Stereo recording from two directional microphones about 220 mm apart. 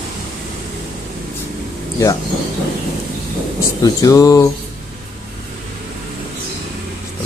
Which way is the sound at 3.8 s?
15° left (ahead or behind).